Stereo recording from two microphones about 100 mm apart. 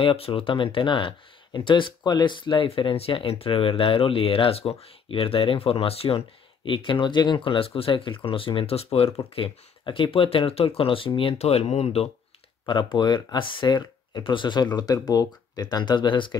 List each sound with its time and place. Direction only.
0.0 s speech: 65° left (ahead or behind)
9.3 s speech: 60° left (ahead or behind); by 12.1 s 85° left
12.6 s speech: 50° left (ahead or behind)